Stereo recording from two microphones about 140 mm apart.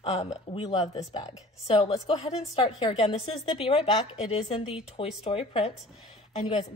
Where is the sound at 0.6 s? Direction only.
30° left (ahead or behind).